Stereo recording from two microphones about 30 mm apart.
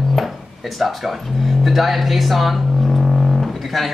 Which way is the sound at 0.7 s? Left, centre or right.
Centre.